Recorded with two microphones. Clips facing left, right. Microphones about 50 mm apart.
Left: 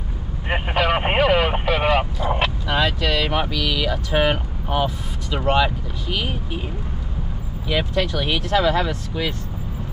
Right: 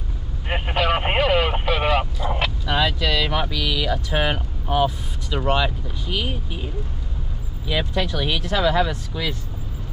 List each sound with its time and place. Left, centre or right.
0.5 s vehicle: centre
3.2 s vehicle: left
3.7 s speech: centre
5.4 s speech: left
7.9 s speech: centre